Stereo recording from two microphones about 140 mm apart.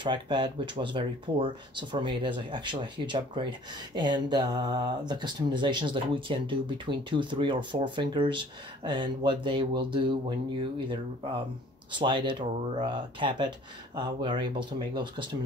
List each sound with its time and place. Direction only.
0.0 s speech: 35° right (ahead or behind)